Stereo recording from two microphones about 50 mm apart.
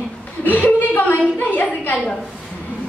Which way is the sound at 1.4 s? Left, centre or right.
Left.